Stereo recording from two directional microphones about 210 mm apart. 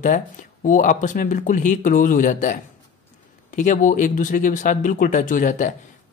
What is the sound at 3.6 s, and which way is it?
Speech, 35° left (ahead or behind).